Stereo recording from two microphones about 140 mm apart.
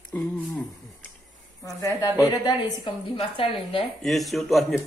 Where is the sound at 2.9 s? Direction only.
40° left (ahead or behind).